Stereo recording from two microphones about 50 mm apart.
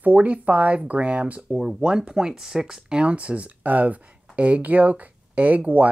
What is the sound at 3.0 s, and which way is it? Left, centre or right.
Speech, right.